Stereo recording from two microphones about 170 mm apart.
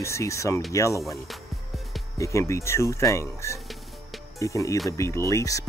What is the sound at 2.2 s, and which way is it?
Speech, 15° left (ahead or behind).